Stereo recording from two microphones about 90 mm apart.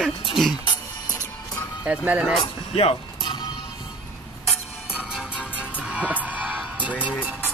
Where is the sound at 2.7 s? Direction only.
90° left.